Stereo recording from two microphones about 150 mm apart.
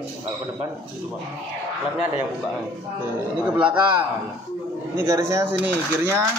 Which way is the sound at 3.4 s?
10° right (ahead or behind).